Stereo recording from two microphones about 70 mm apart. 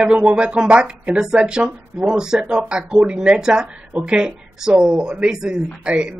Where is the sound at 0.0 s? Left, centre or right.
Centre.